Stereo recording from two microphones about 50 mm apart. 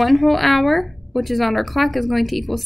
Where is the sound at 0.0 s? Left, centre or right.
Centre.